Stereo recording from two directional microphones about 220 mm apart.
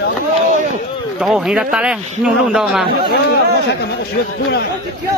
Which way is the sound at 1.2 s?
5° right (ahead or behind).